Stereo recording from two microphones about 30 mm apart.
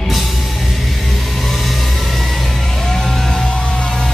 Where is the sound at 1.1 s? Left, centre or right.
Centre.